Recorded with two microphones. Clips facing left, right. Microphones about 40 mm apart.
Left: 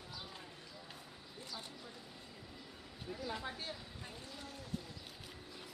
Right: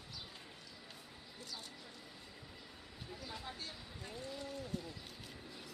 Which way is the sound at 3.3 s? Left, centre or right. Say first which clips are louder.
Left 5 dB; left.